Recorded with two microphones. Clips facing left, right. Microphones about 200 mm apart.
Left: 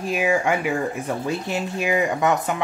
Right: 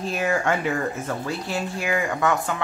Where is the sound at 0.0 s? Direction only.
10° left (ahead or behind).